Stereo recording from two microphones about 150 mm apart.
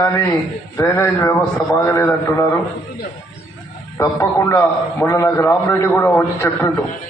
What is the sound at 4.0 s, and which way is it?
A man's voice, 20° left (ahead or behind).